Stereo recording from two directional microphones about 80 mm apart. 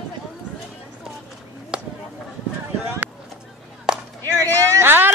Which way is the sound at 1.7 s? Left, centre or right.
Centre.